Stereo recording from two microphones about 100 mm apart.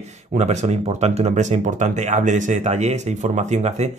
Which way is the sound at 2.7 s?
90° right.